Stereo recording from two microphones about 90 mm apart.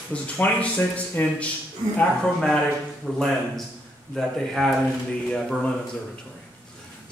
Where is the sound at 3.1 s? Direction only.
20° right (ahead or behind).